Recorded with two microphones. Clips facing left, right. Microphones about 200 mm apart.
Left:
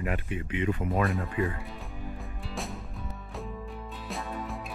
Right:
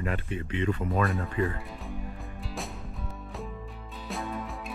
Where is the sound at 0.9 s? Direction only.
Centre (ahead or behind).